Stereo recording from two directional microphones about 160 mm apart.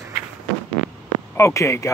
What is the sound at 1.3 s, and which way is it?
Speech, 20° left (ahead or behind).